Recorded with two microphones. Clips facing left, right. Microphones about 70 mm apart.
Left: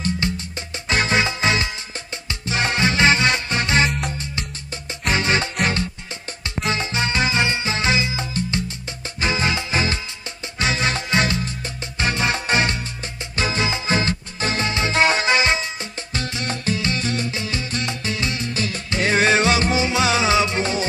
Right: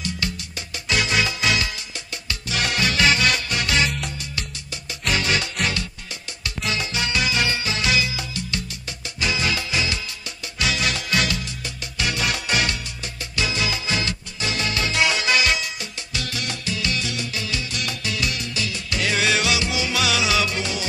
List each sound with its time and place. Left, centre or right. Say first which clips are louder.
0.2 s music: left 4 dB; left